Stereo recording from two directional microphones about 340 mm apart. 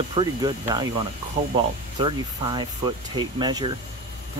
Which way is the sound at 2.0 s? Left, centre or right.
Centre.